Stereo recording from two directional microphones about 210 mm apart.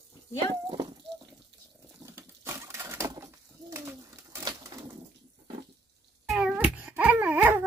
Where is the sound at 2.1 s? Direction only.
10° right (ahead or behind).